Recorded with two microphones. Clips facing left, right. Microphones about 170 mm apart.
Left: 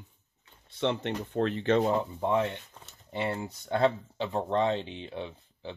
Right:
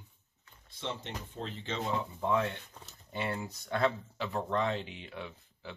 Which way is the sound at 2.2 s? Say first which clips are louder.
Left 3 dB; 25° left (ahead or behind).